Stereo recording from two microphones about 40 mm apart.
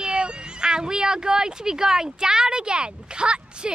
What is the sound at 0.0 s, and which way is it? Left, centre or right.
Speech, right.